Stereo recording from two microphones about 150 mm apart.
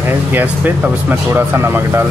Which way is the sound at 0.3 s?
10° right (ahead or behind).